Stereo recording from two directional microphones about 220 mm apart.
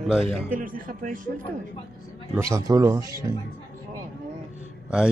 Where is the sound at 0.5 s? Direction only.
40° right (ahead or behind).